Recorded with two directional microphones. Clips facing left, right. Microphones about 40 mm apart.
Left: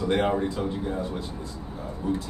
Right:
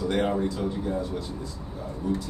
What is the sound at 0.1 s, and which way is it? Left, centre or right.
Speech, left.